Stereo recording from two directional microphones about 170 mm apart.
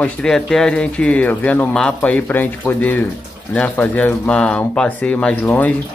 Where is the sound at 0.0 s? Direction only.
5° left (ahead or behind).